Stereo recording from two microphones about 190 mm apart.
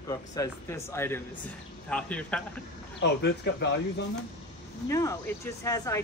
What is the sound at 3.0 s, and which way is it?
Speech, 65° left (ahead or behind).